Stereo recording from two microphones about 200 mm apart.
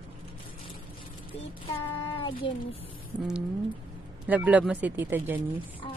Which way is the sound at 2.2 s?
25° left (ahead or behind).